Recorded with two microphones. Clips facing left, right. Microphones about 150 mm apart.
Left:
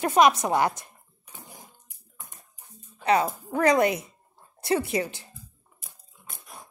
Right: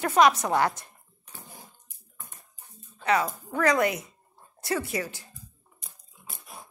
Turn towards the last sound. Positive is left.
turn(degrees=0)  # may be behind; listen again after turning